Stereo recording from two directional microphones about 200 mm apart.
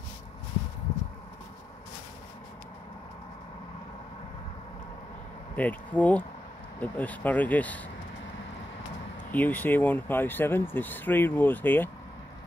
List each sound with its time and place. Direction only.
5.6 s speech: 10° left (ahead or behind)
9.3 s speech: 10° left (ahead or behind)